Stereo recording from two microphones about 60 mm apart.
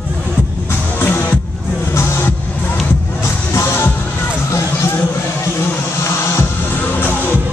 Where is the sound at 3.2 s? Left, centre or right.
Left.